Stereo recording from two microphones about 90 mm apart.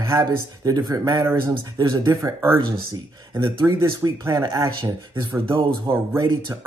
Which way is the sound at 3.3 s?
35° right (ahead or behind).